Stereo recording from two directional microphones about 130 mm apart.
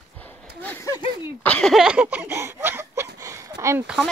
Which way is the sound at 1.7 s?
5° right (ahead or behind).